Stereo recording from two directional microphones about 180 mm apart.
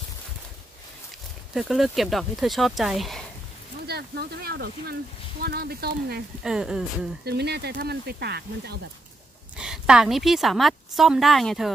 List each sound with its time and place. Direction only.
1.5 s a woman's voice: centre (ahead or behind)
3.8 s speech: 60° right (ahead or behind)
6.4 s a woman's voice: 5° right (ahead or behind)
7.2 s speech: 65° right (ahead or behind)
9.6 s a woman's voice: 5° right (ahead or behind)